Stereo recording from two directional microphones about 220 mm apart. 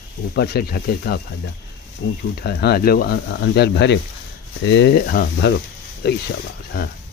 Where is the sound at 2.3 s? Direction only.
45° left (ahead or behind).